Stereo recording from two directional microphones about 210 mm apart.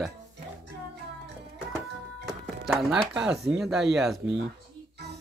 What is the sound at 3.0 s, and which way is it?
Speech, 5° right (ahead or behind).